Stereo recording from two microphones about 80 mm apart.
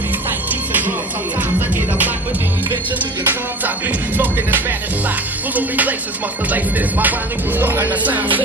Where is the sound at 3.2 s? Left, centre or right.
Right.